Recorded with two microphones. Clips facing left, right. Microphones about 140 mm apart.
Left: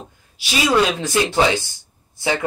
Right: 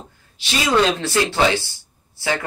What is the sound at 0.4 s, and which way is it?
Speech, 10° left (ahead or behind).